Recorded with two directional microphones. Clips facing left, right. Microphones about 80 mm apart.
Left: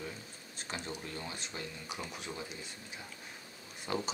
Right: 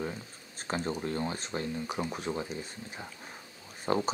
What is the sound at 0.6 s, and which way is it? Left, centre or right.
Speech, right.